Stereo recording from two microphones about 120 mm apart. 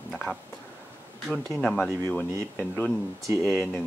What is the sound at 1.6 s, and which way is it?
Speech, 10° left (ahead or behind).